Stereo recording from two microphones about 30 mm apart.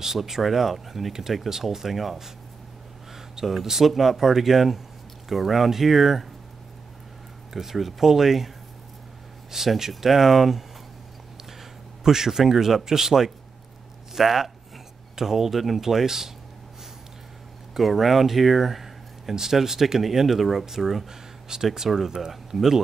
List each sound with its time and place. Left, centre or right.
0.0 s speech: centre
3.3 s speech: centre
7.5 s speech: centre
9.8 s speech: centre
12.0 s speech: centre
17.7 s speech: centre
21.1 s a sound: centre
21.7 s speech: centre